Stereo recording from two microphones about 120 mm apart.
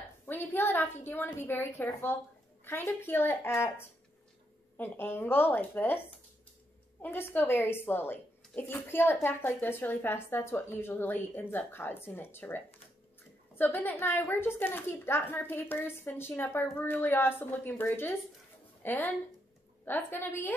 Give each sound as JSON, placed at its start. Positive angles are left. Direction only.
{"t": 0.3, "sound": "a woman's voice", "side_deg": 15}